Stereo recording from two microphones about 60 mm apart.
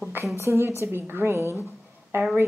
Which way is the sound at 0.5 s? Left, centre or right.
Right.